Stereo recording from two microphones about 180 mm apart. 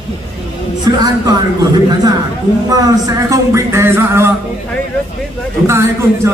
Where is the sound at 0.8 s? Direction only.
20° right (ahead or behind).